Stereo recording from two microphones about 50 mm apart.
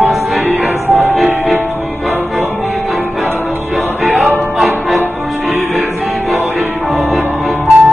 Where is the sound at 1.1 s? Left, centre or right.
Centre.